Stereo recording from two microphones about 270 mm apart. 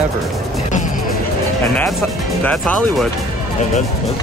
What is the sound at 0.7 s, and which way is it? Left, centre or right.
Music, left.